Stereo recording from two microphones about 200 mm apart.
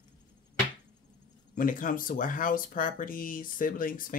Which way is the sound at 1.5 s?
40° left (ahead or behind).